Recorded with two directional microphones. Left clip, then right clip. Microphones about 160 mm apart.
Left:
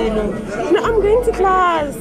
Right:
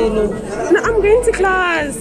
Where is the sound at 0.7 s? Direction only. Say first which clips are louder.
Right 2 dB; 20° right (ahead or behind).